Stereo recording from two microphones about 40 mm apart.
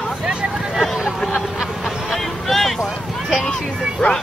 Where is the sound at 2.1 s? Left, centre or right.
Centre.